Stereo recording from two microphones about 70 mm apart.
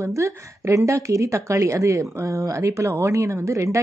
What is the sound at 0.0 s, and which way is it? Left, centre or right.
Speech, right.